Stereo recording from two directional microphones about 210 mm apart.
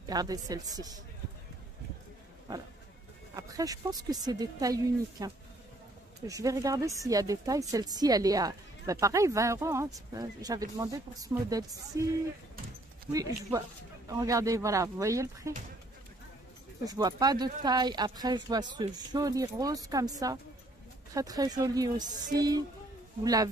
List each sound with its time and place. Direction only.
0.1 s speech: 20° right (ahead or behind)
3.3 s speech: 15° right (ahead or behind)
13.1 s speech: 15° right (ahead or behind)
16.8 s speech: 20° right (ahead or behind)